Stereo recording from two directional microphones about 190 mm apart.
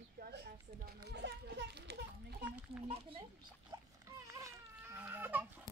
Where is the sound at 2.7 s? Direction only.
35° right (ahead or behind).